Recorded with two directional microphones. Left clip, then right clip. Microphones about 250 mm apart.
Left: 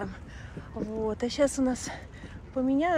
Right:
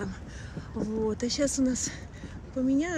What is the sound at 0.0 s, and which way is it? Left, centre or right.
Speech, centre.